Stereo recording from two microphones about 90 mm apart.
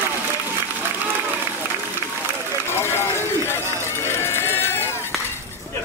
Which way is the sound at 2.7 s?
30° left (ahead or behind).